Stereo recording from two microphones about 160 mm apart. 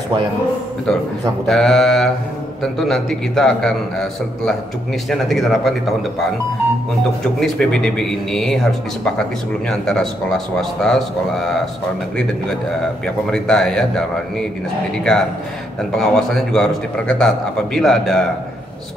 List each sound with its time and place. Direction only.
1.5 s a man's voice: centre (ahead or behind)
7.3 s a man's voice: 5° left (ahead or behind)
13.3 s a man's voice: 5° left (ahead or behind)
15.1 s a man's voice: 5° left (ahead or behind)